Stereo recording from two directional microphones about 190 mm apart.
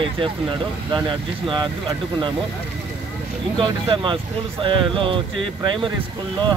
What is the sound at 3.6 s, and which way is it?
Speech, 25° right (ahead or behind).